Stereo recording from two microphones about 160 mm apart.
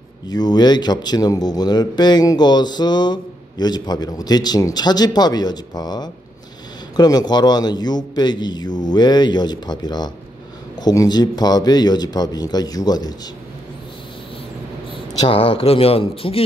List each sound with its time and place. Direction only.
0.3 s a man's voice: 25° left (ahead or behind)
15.1 s speech: 35° left (ahead or behind)